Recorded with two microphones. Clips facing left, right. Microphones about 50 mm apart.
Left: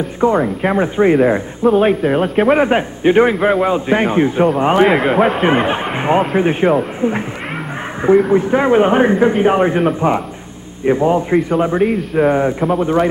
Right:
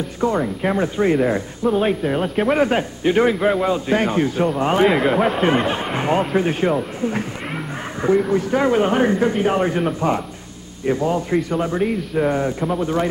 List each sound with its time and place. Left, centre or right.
0.2 s speech: left
8.3 s speech: left